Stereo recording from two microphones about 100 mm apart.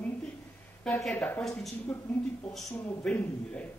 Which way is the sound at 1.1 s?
20° left (ahead or behind).